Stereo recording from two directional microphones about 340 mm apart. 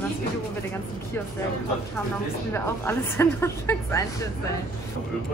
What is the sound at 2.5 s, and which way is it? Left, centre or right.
A woman's voice, centre.